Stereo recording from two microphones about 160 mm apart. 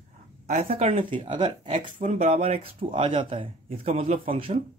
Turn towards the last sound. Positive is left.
turn(degrees=-35)  # may be behind; listen again after turning